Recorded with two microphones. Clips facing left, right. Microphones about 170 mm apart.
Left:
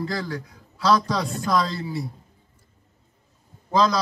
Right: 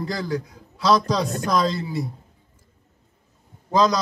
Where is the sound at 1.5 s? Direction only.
15° right (ahead or behind).